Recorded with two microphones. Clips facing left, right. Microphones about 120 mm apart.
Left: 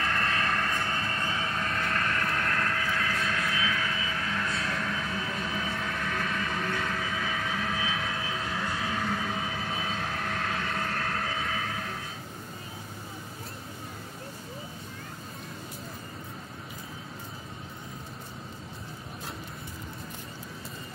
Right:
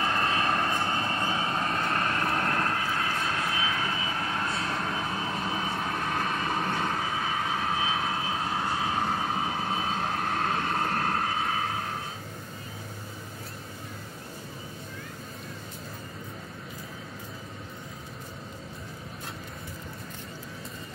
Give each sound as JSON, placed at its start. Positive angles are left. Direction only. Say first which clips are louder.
{"t": 0.0, "sound": "vehicle", "louder": "right 2 dB", "side_deg": -20}